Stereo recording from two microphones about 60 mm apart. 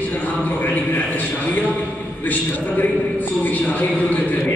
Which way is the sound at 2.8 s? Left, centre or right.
Left.